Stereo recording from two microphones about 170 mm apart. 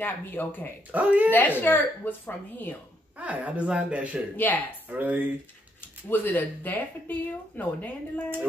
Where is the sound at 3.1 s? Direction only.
10° right (ahead or behind).